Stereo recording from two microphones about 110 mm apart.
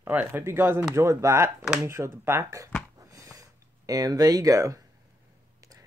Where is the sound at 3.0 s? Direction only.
30° right (ahead or behind).